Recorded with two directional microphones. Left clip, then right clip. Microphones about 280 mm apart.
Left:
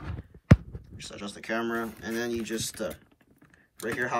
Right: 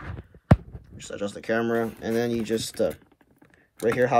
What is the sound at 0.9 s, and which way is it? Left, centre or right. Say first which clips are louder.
Speech: right 8 dB; centre.